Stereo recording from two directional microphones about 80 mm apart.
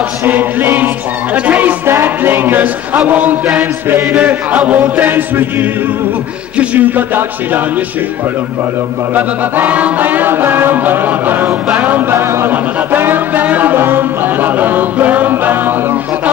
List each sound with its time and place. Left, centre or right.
0.2 s chant: right
9.1 s chant: centre